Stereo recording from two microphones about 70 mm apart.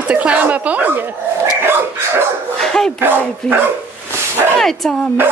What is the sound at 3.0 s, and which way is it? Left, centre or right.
Speech, right.